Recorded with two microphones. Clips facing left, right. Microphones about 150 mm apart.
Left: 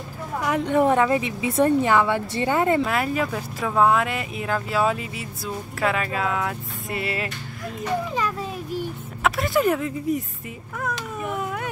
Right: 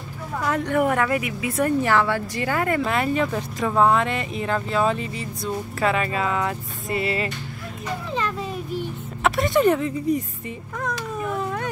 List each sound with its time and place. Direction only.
0.4 s a woman's voice: 15° left (ahead or behind)
2.8 s speech: centre (ahead or behind)
9.2 s speech: centre (ahead or behind)
10.8 s cat: 5° left (ahead or behind)